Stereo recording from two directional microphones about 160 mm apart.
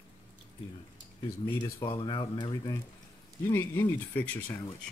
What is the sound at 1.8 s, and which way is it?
Speech, 30° left (ahead or behind).